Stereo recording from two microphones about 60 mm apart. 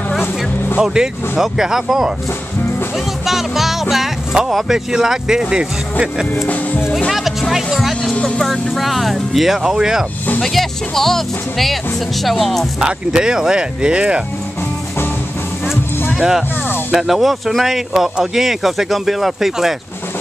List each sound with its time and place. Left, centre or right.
0.7 s speech: centre
3.3 s speech: centre
6.4 s speech: left
7.1 s music: centre
8.1 s music: centre
8.4 s speech: centre
10.4 s speech: centre
12.8 s speech: centre
16.2 s speech: centre